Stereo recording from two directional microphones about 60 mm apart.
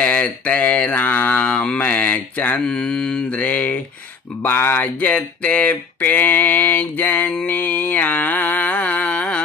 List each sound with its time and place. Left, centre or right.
0.0 s mantra: left
2.6 s speech: centre
3.3 s mantra: left
4.4 s a sound: left
7.4 s mantra: left